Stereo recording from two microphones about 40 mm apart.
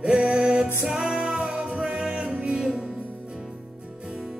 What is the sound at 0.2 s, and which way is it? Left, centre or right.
Music, right.